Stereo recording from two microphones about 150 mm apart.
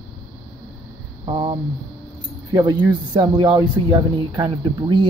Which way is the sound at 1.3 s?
30° right (ahead or behind).